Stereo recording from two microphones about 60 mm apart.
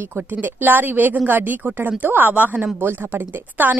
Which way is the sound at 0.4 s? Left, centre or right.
Right.